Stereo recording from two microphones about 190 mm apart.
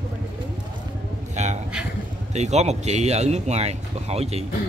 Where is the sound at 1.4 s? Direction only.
35° right (ahead or behind).